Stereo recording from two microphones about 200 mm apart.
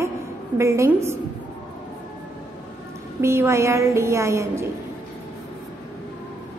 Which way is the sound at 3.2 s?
15° right (ahead or behind).